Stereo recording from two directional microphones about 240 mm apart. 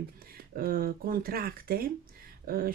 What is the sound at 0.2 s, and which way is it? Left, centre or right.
Speech, right.